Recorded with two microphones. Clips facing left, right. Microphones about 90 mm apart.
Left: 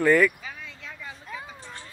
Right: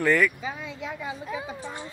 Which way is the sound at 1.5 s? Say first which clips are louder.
Right 7 dB; 15° right (ahead or behind).